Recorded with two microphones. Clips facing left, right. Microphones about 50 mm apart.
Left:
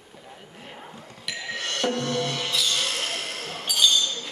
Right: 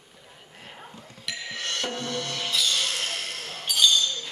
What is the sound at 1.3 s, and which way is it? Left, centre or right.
Music, centre.